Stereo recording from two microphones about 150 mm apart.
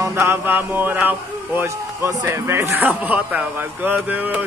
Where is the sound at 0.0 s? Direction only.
15° right (ahead or behind).